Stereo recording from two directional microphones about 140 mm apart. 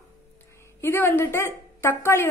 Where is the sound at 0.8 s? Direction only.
15° left (ahead or behind).